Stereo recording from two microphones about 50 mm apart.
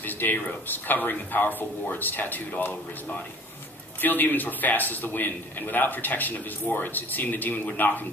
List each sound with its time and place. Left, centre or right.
0.0 s a man's voice: left